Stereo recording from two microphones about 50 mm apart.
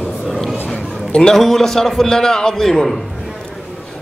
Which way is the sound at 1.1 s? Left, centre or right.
Centre.